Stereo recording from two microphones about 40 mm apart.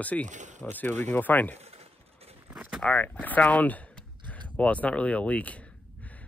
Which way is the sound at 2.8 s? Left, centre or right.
Left.